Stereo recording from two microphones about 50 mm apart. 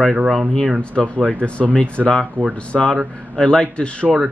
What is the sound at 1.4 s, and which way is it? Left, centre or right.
Speech, left.